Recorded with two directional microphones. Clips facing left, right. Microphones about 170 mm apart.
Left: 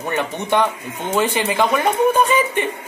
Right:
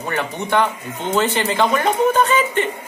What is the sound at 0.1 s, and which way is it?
Speech, 15° left (ahead or behind).